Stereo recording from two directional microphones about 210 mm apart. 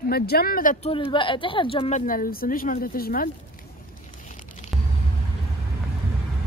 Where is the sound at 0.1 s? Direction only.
45° left (ahead or behind).